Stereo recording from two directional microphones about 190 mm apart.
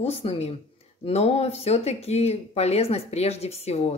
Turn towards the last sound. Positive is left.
turn(degrees=35)  # may be behind; listen again after turning